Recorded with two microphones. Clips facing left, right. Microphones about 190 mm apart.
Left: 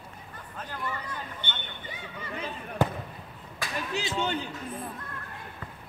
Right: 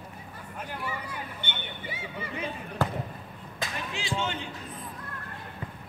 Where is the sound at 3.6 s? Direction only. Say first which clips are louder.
Right 1 dB; 20° right (ahead or behind).